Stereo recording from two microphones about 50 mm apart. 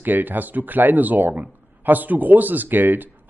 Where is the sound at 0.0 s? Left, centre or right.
Right.